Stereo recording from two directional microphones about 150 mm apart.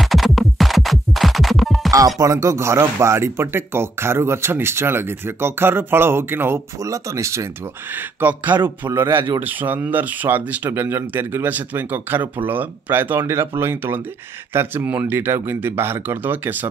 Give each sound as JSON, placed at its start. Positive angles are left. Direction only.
{"t": 0.0, "sound": "music", "side_deg": 0}
{"t": 1.9, "sound": "speech", "side_deg": -25}